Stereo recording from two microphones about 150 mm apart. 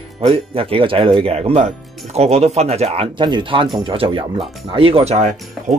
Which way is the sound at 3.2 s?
30° right (ahead or behind).